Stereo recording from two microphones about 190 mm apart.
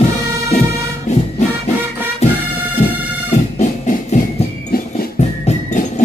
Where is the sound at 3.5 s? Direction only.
40° left (ahead or behind).